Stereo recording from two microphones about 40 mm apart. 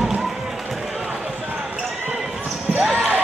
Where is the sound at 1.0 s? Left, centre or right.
Centre.